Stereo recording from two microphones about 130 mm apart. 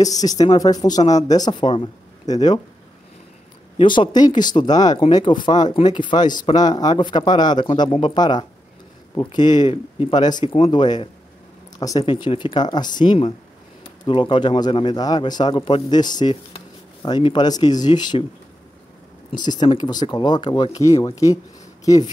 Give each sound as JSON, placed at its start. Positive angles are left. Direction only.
{"t": 0.0, "sound": "speech", "side_deg": 30}
{"t": 3.7, "sound": "a man's voice", "side_deg": 40}
{"t": 19.4, "sound": "a man's voice", "side_deg": 35}